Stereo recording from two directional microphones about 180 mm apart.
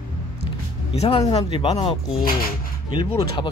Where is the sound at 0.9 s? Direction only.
35° left (ahead or behind).